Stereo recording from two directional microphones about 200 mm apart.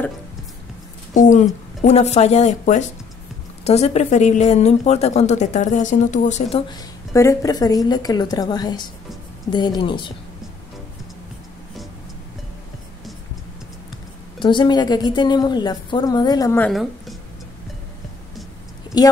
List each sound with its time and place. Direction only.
1.1 s speech: 40° left (ahead or behind)
7.2 s a woman's voice: 15° left (ahead or behind)
14.4 s a woman's voice: 25° left (ahead or behind); by 17.2 s centre (ahead or behind)
18.9 s a woman's voice: 20° left (ahead or behind)